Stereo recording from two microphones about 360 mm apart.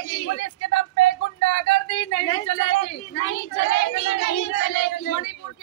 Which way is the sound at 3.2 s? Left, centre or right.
Left.